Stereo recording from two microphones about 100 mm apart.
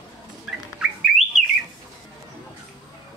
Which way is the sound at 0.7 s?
5° right (ahead or behind).